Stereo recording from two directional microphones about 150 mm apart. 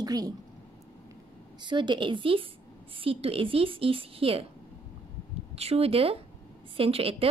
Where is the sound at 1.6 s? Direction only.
30° right (ahead or behind).